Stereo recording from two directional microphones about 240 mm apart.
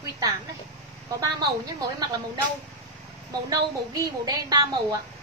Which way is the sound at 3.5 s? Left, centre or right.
Centre.